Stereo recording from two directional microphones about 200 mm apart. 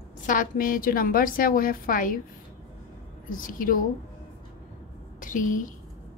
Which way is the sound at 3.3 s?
45° left (ahead or behind).